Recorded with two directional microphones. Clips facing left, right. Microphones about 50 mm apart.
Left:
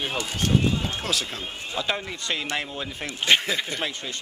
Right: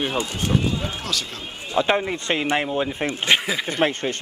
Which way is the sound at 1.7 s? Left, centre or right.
Right.